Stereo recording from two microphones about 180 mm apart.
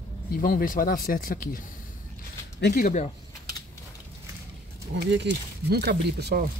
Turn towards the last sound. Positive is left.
turn(degrees=-65)  # may be behind; listen again after turning